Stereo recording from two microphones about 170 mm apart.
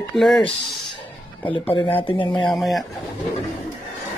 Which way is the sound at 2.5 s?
Centre (ahead or behind).